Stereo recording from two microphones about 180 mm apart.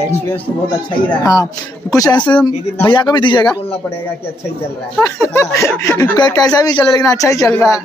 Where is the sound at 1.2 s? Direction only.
20° left (ahead or behind).